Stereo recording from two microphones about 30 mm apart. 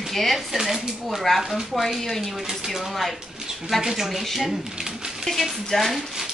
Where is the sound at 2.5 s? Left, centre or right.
Centre.